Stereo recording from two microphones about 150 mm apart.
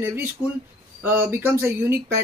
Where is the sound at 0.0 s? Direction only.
15° right (ahead or behind).